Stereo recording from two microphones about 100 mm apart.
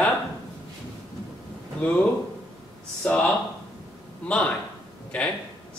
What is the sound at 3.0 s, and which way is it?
Speech, 10° left (ahead or behind).